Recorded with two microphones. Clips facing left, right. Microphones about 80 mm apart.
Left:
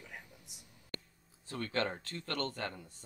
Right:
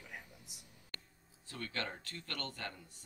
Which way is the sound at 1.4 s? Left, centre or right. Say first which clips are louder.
Left 7 dB; left.